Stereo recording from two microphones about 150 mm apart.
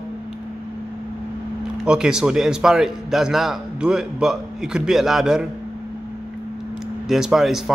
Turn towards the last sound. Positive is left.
turn(degrees=0)  # may be behind; listen again after turning